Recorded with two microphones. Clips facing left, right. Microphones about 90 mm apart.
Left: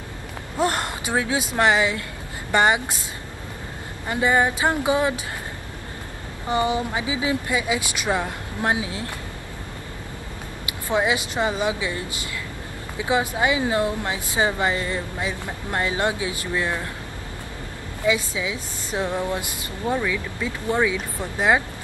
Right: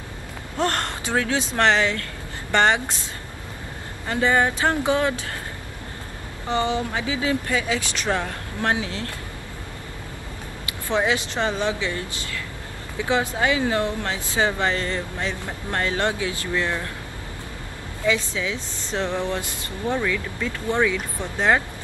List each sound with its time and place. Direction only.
0.6 s speech: 10° left (ahead or behind)
4.1 s speech: 15° left (ahead or behind)
6.5 s speech: 15° left (ahead or behind)
10.9 s speech: 15° left (ahead or behind)
18.0 s speech: 15° left (ahead or behind)